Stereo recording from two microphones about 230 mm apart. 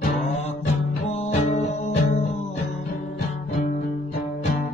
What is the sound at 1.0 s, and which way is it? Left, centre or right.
Music, left.